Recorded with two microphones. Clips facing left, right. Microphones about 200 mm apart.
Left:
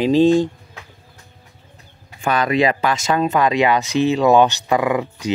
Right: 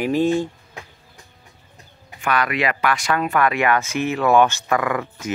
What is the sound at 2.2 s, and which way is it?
Speech, 25° left (ahead or behind).